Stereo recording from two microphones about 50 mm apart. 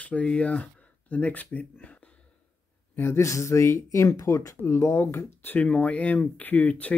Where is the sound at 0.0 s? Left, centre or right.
Left.